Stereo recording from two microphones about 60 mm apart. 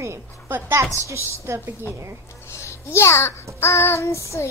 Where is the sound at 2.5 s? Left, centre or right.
Left.